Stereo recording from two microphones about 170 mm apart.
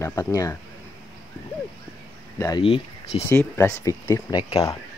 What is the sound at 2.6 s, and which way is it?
Speech, 35° left (ahead or behind).